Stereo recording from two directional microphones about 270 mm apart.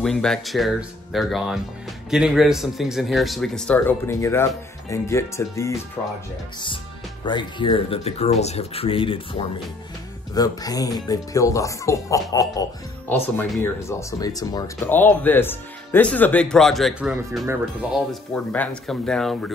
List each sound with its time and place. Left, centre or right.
0.0 s a man's voice: centre
7.2 s a man's voice: centre